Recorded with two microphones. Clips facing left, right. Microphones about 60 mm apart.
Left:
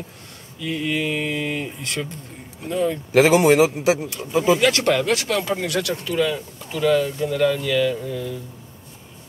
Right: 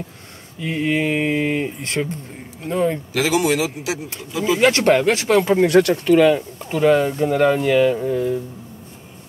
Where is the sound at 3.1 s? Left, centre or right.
Left.